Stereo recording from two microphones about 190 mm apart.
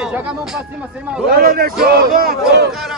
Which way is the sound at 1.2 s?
50° right (ahead or behind).